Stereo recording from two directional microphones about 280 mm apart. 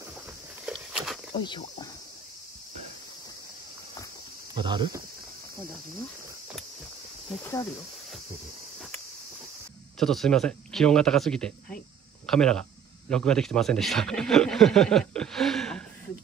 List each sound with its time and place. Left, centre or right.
0.7 s walk: centre
1.3 s speech: centre
4.6 s speech: centre
9.9 s a man's voice: centre